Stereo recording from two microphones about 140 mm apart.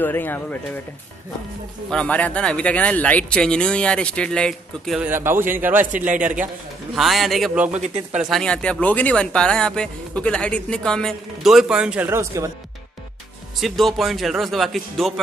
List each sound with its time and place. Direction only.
0.0 s speech: 15° left (ahead or behind)
1.9 s speech: 10° left (ahead or behind)
4.9 s a man's voice: 15° right (ahead or behind)
5.9 s a man's voice: 70° right (ahead or behind)
6.9 s speech: centre (ahead or behind)
7.7 s speech: 55° right (ahead or behind)
8.2 s speech: centre (ahead or behind); by 12.4 s 20° right (ahead or behind)
13.6 s speech: centre (ahead or behind)